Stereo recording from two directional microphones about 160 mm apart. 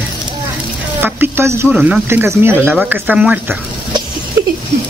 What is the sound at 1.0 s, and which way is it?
Speech, 15° right (ahead or behind).